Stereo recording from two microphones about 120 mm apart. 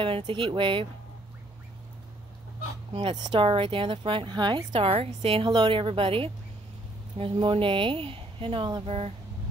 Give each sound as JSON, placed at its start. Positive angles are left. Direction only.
{"t": 0.3, "sound": "speech", "side_deg": -45}
{"t": 2.9, "sound": "speech", "side_deg": -45}
{"t": 4.8, "sound": "speech", "side_deg": -55}
{"t": 5.5, "sound": "speech", "side_deg": -40}
{"t": 8.8, "sound": "speech", "side_deg": -55}